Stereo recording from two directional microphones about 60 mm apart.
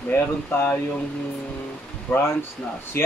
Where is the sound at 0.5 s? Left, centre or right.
Left.